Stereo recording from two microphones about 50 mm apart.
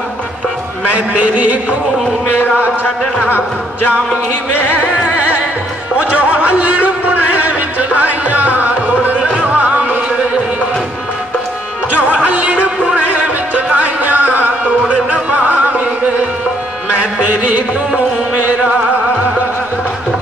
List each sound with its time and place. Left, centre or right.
0.9 s a man's voice: right
4.6 s music: right
11.9 s music: right
16.9 s a sound: right